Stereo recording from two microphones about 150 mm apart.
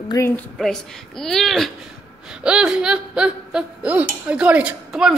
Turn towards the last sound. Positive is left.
turn(degrees=-5)  # may be behind; listen again after turning